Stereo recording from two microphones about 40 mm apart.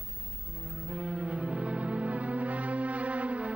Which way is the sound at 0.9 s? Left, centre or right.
Right.